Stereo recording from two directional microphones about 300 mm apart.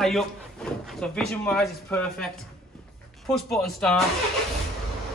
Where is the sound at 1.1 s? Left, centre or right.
Centre.